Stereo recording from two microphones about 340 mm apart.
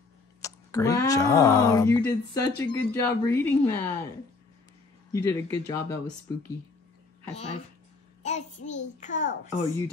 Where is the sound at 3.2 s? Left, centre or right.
Centre.